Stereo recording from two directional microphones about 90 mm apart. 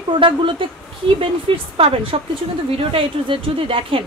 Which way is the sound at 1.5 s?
90° right.